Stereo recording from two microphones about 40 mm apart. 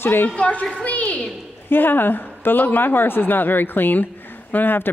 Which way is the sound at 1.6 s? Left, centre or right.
Left.